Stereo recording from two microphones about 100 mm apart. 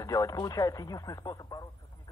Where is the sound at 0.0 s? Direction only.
35° left (ahead or behind).